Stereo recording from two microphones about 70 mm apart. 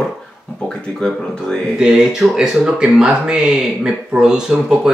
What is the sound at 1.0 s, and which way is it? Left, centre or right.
Speech, centre.